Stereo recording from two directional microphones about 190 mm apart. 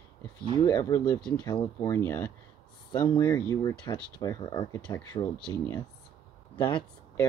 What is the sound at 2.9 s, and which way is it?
Speech, 20° left (ahead or behind).